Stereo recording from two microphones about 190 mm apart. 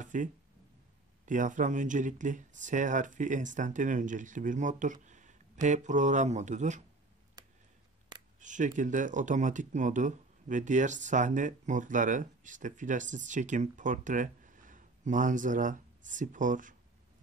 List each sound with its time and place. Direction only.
0.0 s a sound: 40° right (ahead or behind)
1.2 s speech: 40° right (ahead or behind)
8.4 s speech: 40° right (ahead or behind)